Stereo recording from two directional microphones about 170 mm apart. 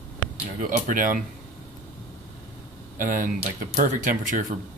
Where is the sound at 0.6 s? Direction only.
55° right (ahead or behind).